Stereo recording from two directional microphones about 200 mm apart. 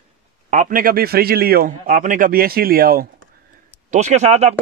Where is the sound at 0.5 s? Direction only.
40° right (ahead or behind).